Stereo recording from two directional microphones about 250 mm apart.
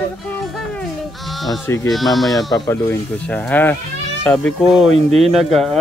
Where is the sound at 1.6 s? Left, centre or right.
Centre.